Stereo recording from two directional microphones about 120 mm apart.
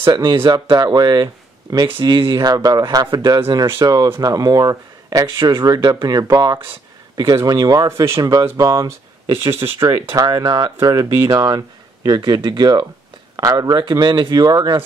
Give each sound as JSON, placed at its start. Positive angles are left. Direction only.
{"t": 0.0, "sound": "speech", "side_deg": -40}
{"t": 10.1, "sound": "speech", "side_deg": -30}